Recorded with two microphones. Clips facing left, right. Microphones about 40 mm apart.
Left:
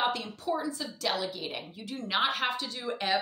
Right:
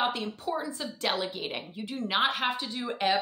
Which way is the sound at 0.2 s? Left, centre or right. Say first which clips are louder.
Even; right.